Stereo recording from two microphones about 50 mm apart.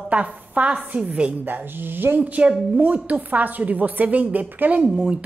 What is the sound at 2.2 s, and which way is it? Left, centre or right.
A woman's voice, right.